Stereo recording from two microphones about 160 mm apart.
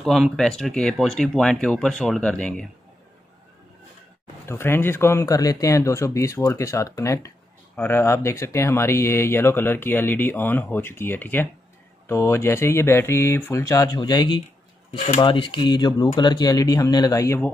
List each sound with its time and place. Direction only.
0.0 s speech: centre (ahead or behind)
4.5 s speech: 15° left (ahead or behind)